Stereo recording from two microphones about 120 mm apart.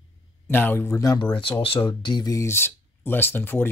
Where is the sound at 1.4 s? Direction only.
45° left (ahead or behind).